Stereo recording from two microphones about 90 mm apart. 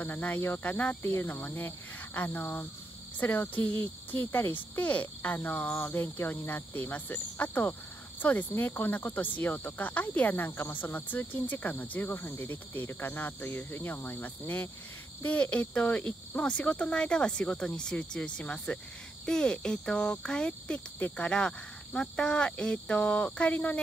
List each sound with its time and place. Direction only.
0.0 s cricket: 20° left (ahead or behind)
15.2 s speech: 15° left (ahead or behind)